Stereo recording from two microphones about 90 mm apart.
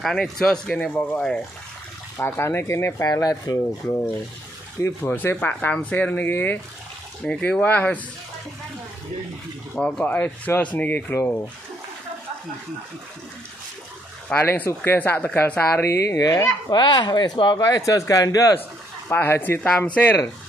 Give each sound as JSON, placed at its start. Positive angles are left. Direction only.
{"t": 0.0, "sound": "speech", "side_deg": 5}
{"t": 3.1, "sound": "speech", "side_deg": 45}
{"t": 4.7, "sound": "speech", "side_deg": 25}
{"t": 7.2, "sound": "speech", "side_deg": 10}
{"t": 9.8, "sound": "speech", "side_deg": 10}
{"t": 14.3, "sound": "speech", "side_deg": 25}
{"t": 15.9, "sound": "speech", "side_deg": 35}
{"t": 16.8, "sound": "speech", "side_deg": 55}
{"t": 17.6, "sound": "speech", "side_deg": 40}
{"t": 19.0, "sound": "speech", "side_deg": 25}